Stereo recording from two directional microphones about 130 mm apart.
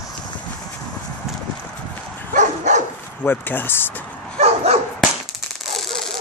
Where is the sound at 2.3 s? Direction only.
70° right (ahead or behind).